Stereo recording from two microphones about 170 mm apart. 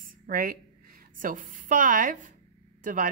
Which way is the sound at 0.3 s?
60° right (ahead or behind).